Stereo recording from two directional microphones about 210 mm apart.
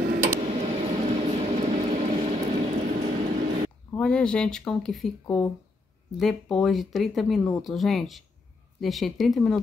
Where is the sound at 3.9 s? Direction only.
5° left (ahead or behind).